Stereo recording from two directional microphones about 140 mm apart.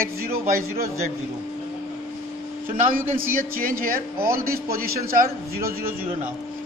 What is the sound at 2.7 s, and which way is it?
Speech, 85° right.